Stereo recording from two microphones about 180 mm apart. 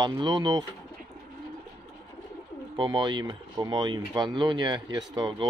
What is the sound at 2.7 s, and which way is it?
Speech, 25° right (ahead or behind).